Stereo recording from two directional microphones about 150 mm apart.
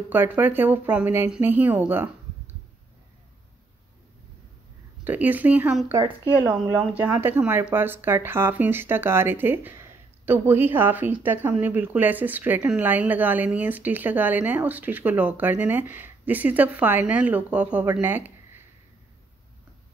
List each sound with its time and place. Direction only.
0.1 s speech: 15° right (ahead or behind)
5.0 s speech: 10° right (ahead or behind)
5.9 s a woman's voice: 20° right (ahead or behind)